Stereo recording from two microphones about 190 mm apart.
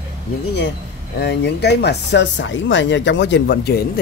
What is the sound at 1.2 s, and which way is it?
Speech, 65° left (ahead or behind).